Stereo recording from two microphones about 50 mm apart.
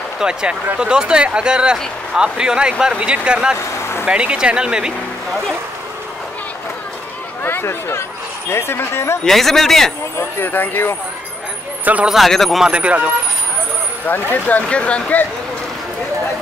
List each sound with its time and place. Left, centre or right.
0.2 s speech: centre
3.5 s vehicle: left
4.0 s speech: right
7.4 s speech: left
9.2 s speech: centre
10.4 s speech: left
11.8 s speech: right
12.3 s speech: centre
12.7 s speech: right
14.0 s speech: left
14.7 s speech: left